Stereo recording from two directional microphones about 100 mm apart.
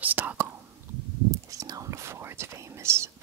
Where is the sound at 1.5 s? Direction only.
35° right (ahead or behind).